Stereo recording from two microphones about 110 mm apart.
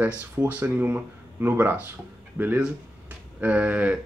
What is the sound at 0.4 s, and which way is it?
Speech, 15° right (ahead or behind).